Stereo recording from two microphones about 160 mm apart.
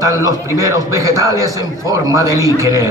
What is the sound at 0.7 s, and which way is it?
A man's voice, 20° right (ahead or behind).